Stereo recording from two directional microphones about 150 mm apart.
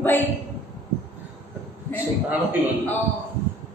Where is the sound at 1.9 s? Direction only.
10° left (ahead or behind).